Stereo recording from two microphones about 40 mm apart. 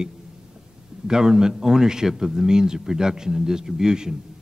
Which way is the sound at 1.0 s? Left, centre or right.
Centre.